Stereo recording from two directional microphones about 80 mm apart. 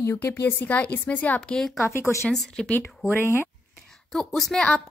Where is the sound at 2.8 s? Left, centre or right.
Left.